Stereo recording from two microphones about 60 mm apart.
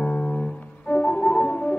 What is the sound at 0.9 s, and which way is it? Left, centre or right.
Music, centre.